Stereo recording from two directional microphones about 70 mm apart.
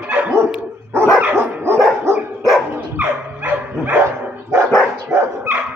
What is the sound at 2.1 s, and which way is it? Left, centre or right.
Dog, right.